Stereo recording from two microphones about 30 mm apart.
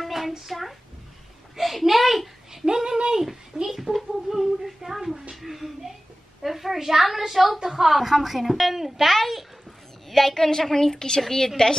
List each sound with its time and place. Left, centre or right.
0.0 s a sound: centre
0.5 s a woman's voice: centre
2.5 s speech: right
3.6 s a child's voice: centre
9.1 s a woman's voice: centre